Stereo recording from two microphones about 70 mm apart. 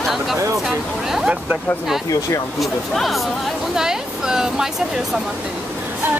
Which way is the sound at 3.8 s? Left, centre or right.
Centre.